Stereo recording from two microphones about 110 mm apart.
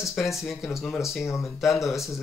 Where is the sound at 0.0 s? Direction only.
Centre (ahead or behind).